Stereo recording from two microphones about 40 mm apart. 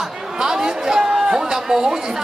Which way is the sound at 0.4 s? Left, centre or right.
Centre.